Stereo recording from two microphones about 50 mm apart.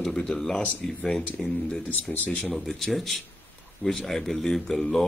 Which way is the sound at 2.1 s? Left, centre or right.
Left.